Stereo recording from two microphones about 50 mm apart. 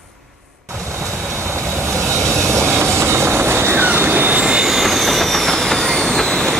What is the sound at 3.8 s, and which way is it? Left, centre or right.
Train, right.